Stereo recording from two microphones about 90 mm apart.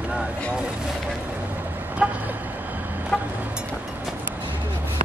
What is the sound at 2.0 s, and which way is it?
Vehicle, 10° right (ahead or behind).